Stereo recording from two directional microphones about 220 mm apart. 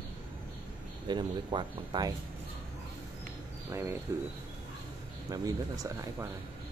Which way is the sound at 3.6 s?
10° right (ahead or behind).